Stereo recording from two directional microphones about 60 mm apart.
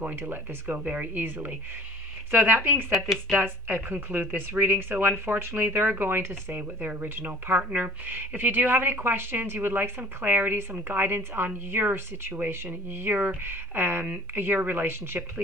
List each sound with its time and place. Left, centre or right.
0.0 s speech: right
2.9 s speech: centre
3.3 s speech: right